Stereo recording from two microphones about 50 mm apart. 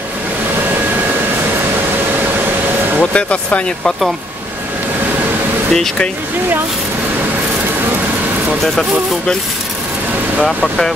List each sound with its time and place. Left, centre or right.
3.0 s speech: left
5.7 s speech: centre
10.4 s speech: centre